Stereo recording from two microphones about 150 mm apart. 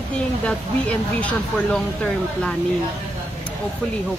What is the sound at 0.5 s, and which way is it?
Speech, 5° left (ahead or behind).